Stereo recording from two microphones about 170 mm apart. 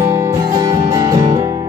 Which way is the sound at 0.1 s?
15° right (ahead or behind).